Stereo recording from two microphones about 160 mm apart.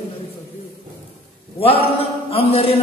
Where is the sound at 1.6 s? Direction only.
35° left (ahead or behind).